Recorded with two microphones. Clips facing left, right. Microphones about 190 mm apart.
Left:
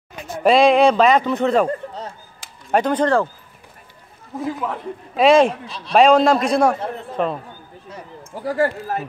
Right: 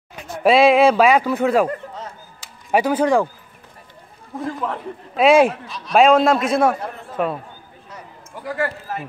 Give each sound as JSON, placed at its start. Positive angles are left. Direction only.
{"t": 0.4, "sound": "speech", "side_deg": -5}
{"t": 2.7, "sound": "speech", "side_deg": -10}
{"t": 4.4, "sound": "a man's voice", "side_deg": 5}
{"t": 8.5, "sound": "a man's voice", "side_deg": 30}